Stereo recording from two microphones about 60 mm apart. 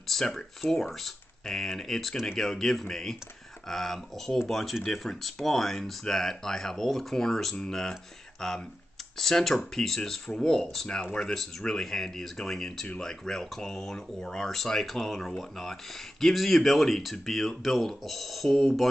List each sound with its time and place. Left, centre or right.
0.1 s speech: centre
12.8 s speech: centre
13.2 s speech: centre